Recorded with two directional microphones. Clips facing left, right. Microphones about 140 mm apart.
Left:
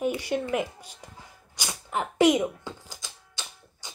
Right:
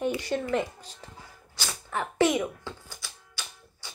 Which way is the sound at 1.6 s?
15° left (ahead or behind).